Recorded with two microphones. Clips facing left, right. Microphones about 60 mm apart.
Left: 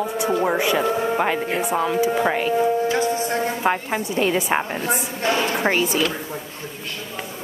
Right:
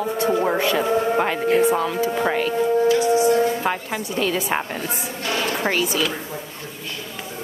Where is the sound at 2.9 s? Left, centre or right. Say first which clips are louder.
Right 5 dB; left.